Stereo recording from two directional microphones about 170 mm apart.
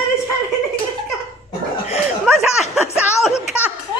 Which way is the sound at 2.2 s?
5° right (ahead or behind).